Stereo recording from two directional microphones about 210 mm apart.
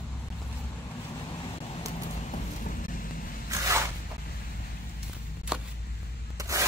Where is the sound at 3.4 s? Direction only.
15° right (ahead or behind).